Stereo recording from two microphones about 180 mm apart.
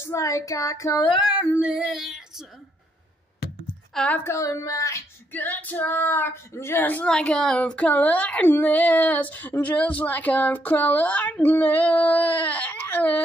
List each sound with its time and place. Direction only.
0.0 s female singing: 15° left (ahead or behind)
1.1 s speech: 5° right (ahead or behind)
3.9 s female singing: 5° left (ahead or behind)